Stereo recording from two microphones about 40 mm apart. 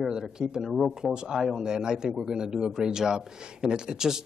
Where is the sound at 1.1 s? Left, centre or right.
Centre.